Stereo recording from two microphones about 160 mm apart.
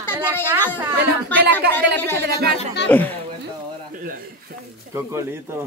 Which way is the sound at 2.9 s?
10° left (ahead or behind).